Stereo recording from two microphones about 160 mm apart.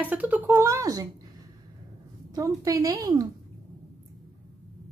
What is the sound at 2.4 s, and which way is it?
Speech, 20° right (ahead or behind).